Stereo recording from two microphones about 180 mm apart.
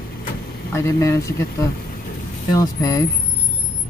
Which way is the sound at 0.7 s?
15° left (ahead or behind).